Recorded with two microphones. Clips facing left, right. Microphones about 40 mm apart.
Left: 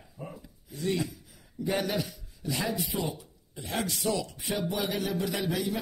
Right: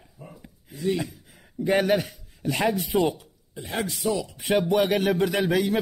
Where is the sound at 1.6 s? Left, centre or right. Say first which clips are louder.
Right 8 dB; right.